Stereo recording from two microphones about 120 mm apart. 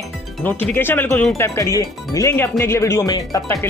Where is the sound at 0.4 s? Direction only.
15° left (ahead or behind).